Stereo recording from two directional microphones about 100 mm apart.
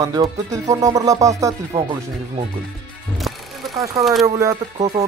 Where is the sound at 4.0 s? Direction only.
30° right (ahead or behind).